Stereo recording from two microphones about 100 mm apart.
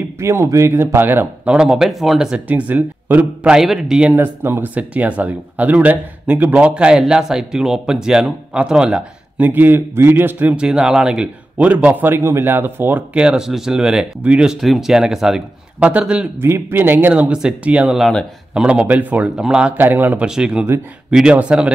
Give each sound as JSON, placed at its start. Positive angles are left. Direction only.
{"t": 0.2, "sound": "speech", "side_deg": -30}
{"t": 2.4, "sound": "speech", "side_deg": -15}
{"t": 4.1, "sound": "speech", "side_deg": -20}
{"t": 10.5, "sound": "speech", "side_deg": -10}
{"t": 16.3, "sound": "a man's voice", "side_deg": -25}
{"t": 17.1, "sound": "speech", "side_deg": -10}
{"t": 19.8, "sound": "a man's voice", "side_deg": -20}
{"t": 20.2, "sound": "speech", "side_deg": -5}